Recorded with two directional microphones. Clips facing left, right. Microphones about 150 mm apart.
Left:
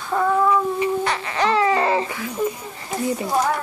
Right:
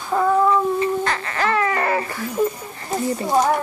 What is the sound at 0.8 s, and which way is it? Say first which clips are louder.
Baby cry: even; 15° left (ahead or behind).